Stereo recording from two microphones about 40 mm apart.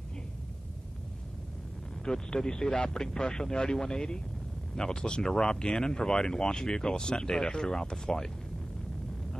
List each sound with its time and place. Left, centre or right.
2.0 s speech: centre